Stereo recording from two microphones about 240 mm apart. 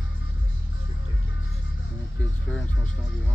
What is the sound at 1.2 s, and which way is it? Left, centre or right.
Music, left.